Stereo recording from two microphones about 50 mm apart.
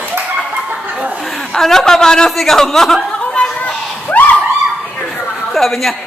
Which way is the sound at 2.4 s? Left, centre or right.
Centre.